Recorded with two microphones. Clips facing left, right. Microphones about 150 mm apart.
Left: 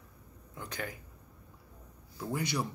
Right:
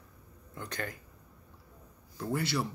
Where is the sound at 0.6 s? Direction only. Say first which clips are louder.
Right 1 dB; 10° left (ahead or behind).